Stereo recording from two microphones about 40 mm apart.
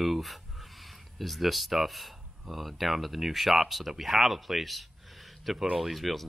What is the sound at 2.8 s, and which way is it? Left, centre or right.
Speech, centre.